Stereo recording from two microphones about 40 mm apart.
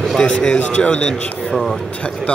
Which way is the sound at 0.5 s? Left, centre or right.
Left.